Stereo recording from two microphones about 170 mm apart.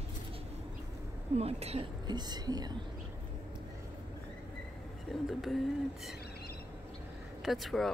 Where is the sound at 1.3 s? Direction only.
35° right (ahead or behind).